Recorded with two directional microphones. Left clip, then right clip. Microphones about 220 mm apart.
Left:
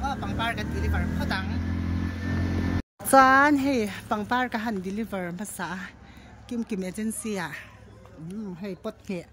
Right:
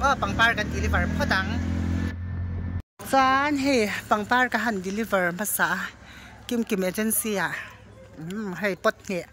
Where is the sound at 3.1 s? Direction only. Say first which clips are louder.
Left 4 dB; 20° left (ahead or behind).